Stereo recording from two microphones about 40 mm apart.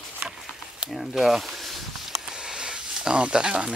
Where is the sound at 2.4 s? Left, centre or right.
Centre.